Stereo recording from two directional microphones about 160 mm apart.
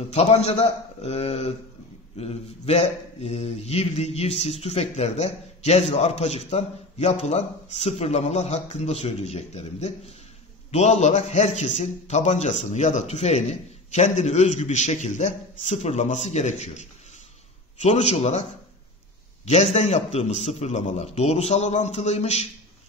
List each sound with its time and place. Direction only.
0.1 s a man's voice: 40° left (ahead or behind)
19.4 s speech: 45° left (ahead or behind)